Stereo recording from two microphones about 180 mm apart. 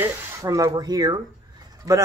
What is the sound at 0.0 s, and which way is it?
Speech, 15° right (ahead or behind).